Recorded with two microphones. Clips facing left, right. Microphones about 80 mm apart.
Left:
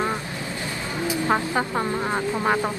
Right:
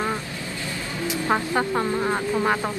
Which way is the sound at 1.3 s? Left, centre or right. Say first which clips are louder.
Right 2 dB; centre.